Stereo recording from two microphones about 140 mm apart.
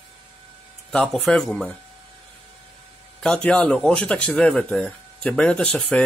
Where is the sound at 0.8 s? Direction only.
5° left (ahead or behind).